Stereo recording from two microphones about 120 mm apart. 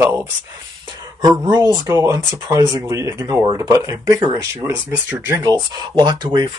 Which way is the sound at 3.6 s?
25° right (ahead or behind).